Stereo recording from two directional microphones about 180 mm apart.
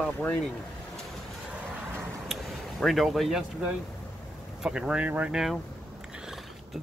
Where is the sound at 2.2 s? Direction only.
Centre (ahead or behind).